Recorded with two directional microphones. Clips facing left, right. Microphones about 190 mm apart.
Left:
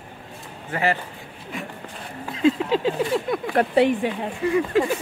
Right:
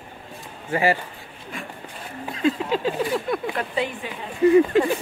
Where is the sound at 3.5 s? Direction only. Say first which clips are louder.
Left 8 dB; 65° left (ahead or behind).